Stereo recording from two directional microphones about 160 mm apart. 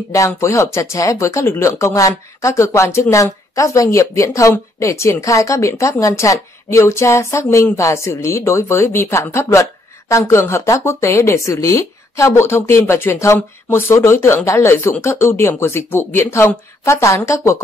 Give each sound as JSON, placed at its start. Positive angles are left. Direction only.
{"t": 0.1, "sound": "speech", "side_deg": 20}